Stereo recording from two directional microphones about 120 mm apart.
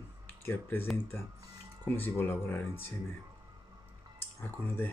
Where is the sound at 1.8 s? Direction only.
20° left (ahead or behind).